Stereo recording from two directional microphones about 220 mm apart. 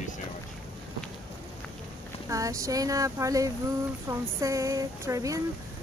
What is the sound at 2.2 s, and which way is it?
Speech, 15° right (ahead or behind).